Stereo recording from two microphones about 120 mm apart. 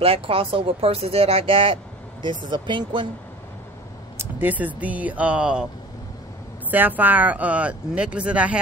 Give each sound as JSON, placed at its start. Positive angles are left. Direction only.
{"t": 0.0, "sound": "speech", "side_deg": -50}
{"t": 4.2, "sound": "speech", "side_deg": -15}
{"t": 6.7, "sound": "speech", "side_deg": -15}